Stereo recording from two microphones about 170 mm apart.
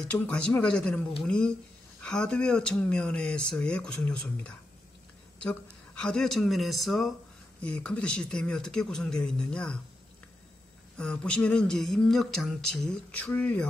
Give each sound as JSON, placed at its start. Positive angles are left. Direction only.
{"t": 0.1, "sound": "speech", "side_deg": 5}
{"t": 11.0, "sound": "speech", "side_deg": 5}